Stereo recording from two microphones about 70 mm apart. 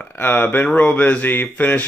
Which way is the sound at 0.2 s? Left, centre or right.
Left.